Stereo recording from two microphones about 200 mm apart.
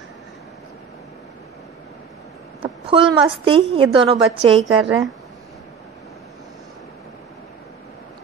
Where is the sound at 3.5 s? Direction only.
25° right (ahead or behind).